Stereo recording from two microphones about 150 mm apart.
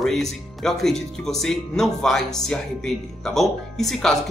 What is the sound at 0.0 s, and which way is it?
Speech, centre (ahead or behind).